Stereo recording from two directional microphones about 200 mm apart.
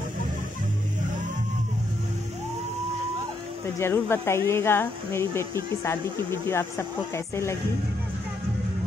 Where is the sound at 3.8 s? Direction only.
10° left (ahead or behind).